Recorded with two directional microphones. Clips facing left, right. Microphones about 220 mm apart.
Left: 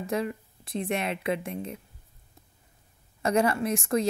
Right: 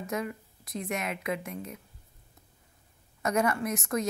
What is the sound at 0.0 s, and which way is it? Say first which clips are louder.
A woman's voice: left 4 dB; 30° left (ahead or behind).